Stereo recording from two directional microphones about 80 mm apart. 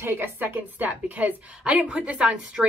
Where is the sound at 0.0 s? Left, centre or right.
Right.